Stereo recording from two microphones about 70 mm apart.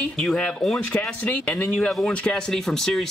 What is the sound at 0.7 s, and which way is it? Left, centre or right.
Speech, left.